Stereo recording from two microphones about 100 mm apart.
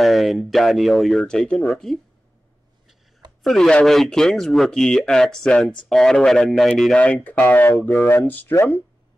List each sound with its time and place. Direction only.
0.0 s speech: centre (ahead or behind)
3.4 s speech: 5° left (ahead or behind)